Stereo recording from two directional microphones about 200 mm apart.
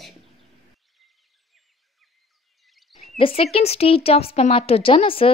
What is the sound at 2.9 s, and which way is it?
Speech, 30° left (ahead or behind).